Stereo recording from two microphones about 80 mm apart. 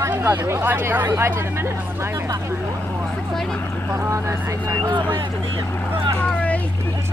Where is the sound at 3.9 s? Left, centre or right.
Right.